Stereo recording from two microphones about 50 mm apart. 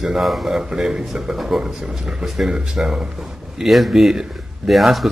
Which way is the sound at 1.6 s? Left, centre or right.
Centre.